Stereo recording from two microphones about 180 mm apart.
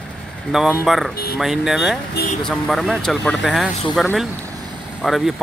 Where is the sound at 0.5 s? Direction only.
Centre (ahead or behind).